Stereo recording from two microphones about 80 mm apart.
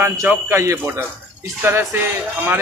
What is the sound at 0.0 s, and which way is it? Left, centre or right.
Speech, right.